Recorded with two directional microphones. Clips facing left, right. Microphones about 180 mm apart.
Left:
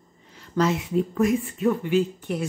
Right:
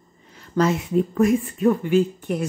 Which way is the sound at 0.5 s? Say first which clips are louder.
Right 3 dB; 50° right (ahead or behind).